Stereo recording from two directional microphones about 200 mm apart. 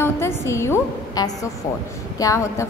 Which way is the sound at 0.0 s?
15° left (ahead or behind).